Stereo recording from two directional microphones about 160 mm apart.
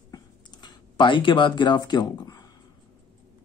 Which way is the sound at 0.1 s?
25° left (ahead or behind).